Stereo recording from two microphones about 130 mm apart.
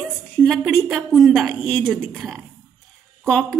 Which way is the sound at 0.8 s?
Centre (ahead or behind).